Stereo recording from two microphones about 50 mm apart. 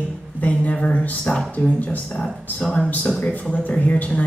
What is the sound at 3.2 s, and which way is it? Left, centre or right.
Speech, left.